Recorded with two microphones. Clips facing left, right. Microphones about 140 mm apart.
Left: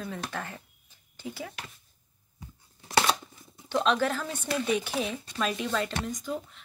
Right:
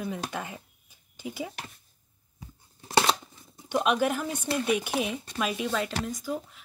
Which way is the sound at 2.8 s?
30° right (ahead or behind).